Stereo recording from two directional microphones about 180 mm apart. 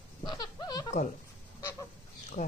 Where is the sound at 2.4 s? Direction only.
40° left (ahead or behind).